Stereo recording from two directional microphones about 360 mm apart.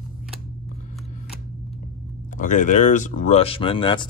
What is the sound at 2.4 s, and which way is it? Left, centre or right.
Speech, left.